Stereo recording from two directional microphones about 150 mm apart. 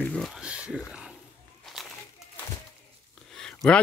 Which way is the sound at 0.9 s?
5° right (ahead or behind).